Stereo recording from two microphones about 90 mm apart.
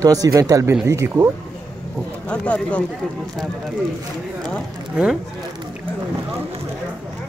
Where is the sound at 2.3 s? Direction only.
15° left (ahead or behind).